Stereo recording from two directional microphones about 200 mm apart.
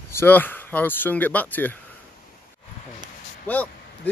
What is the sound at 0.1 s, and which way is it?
Speech, 10° left (ahead or behind).